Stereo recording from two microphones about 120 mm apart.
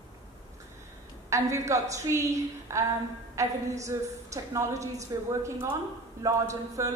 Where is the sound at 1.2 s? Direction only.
25° right (ahead or behind).